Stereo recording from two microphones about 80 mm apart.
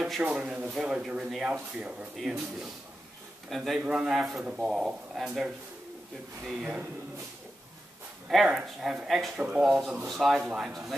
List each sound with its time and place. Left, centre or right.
0.2 s a man's voice: centre
8.5 s a man's voice: centre
9.4 s speech: centre
10.0 s a man's voice: centre
10.4 s speech: centre
10.7 s a man's voice: centre